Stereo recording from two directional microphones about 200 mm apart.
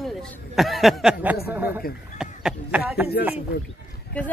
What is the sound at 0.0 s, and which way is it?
A man's voice, centre (ahead or behind).